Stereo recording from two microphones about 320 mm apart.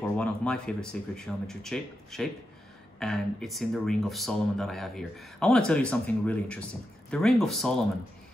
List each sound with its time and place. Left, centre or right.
0.2 s speech: centre